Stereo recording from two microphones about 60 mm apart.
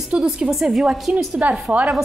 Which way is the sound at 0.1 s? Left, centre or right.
Centre.